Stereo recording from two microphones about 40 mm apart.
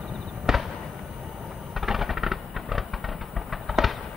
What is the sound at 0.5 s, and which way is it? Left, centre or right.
Fireworks, centre.